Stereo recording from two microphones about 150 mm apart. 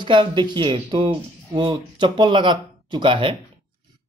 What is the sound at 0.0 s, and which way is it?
Speech, 30° right (ahead or behind).